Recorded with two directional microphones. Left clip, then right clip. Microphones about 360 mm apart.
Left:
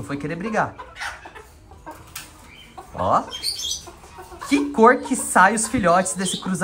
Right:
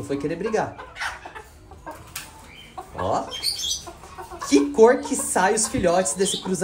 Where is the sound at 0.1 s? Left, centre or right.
Centre.